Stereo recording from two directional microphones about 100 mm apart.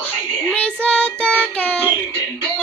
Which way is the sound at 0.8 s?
15° left (ahead or behind).